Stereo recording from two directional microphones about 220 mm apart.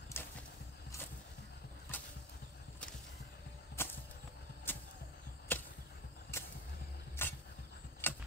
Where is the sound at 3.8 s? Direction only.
10° left (ahead or behind).